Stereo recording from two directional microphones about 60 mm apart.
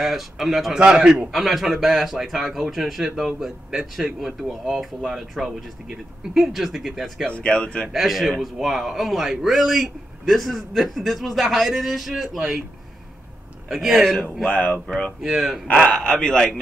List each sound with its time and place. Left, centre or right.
0.0 s a man's voice: centre
0.7 s a man's voice: centre
1.4 s a man's voice: centre
7.2 s speech: centre
7.9 s a man's voice: centre
13.7 s a man's voice: centre
14.5 s speech: left
15.2 s a man's voice: centre
15.6 s speech: centre